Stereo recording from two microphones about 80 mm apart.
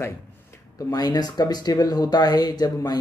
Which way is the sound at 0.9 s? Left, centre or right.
Left.